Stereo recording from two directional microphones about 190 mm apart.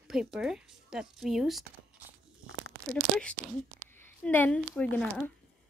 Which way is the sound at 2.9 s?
Centre (ahead or behind).